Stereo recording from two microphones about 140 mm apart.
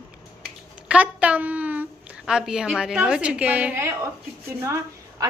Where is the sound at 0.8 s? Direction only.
10° right (ahead or behind).